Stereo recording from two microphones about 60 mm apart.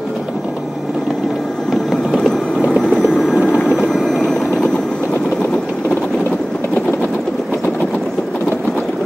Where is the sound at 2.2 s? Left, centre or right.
Centre.